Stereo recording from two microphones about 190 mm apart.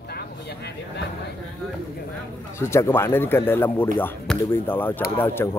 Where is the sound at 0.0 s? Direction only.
55° left (ahead or behind).